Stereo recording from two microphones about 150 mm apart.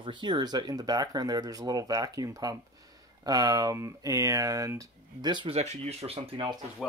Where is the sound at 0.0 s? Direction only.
30° right (ahead or behind).